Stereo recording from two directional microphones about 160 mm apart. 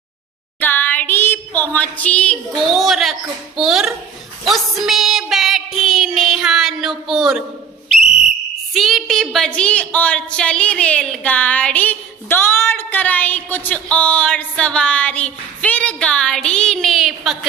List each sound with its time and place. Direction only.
0.6 s a sound: 10° left (ahead or behind)
2.6 s speech: centre (ahead or behind)
4.5 s child singing: centre (ahead or behind)
8.7 s a woman's voice: centre (ahead or behind)